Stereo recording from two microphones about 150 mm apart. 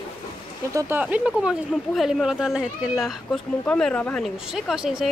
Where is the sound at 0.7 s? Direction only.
20° right (ahead or behind).